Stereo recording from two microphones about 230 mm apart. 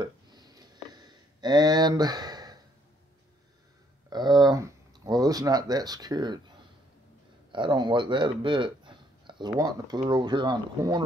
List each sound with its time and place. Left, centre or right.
0.0 s a sound: centre
4.1 s speech: centre
7.5 s speech: centre